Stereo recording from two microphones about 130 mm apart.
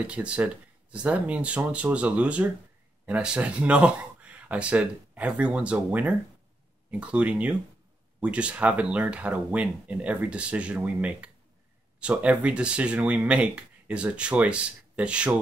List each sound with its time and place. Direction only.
0.0 s speech: 10° right (ahead or behind)